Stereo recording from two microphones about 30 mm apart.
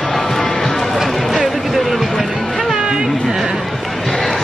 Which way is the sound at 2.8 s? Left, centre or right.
Right.